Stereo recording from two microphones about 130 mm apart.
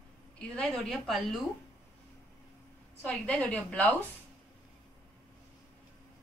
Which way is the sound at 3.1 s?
10° left (ahead or behind).